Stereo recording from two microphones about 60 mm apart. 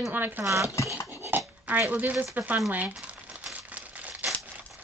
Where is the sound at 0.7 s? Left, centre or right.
Left.